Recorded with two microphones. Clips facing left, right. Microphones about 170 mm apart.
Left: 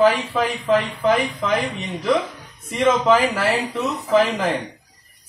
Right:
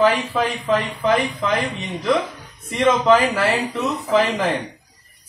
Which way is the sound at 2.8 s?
5° left (ahead or behind).